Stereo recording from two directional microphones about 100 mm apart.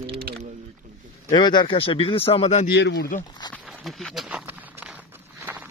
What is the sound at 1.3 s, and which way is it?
Speech, 50° left (ahead or behind).